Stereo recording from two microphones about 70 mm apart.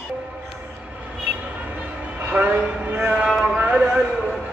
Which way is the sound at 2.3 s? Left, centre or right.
Right.